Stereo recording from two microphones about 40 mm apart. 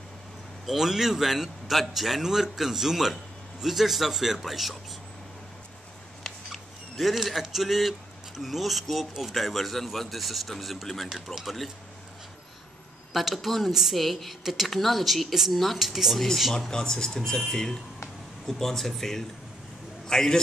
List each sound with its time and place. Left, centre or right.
0.7 s a man's voice: centre
6.5 s speech: centre
13.1 s speech: centre
16.7 s speech: centre
18.5 s a man's voice: centre